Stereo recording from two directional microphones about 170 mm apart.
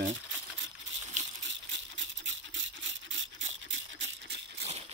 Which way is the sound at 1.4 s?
90° right.